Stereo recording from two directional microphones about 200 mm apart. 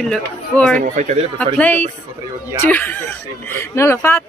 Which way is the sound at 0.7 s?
35° right (ahead or behind).